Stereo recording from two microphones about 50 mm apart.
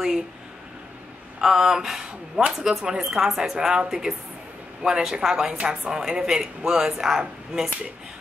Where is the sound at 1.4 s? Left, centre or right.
Centre.